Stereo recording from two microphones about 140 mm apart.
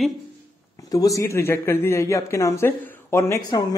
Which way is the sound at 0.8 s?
25° left (ahead or behind).